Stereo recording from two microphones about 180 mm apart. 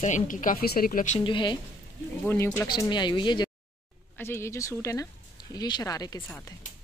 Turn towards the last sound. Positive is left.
turn(degrees=20)  # may be behind; listen again after turning